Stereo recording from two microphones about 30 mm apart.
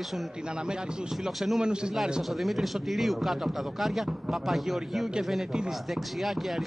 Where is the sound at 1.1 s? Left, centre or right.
Centre.